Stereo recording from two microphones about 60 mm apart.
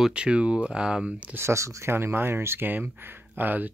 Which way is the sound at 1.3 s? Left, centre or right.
Right.